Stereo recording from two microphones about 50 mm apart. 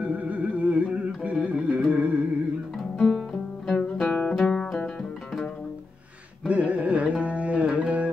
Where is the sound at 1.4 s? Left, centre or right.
Right.